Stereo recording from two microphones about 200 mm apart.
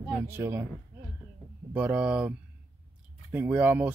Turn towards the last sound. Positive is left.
turn(degrees=-10)  # may be behind; listen again after turning